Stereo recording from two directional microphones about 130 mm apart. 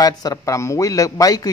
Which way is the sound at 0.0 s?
30° left (ahead or behind).